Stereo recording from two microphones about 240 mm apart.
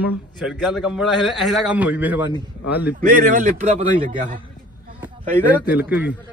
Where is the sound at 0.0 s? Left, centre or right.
Centre.